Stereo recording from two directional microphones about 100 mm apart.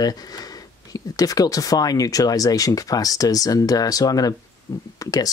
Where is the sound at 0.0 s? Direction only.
40° left (ahead or behind).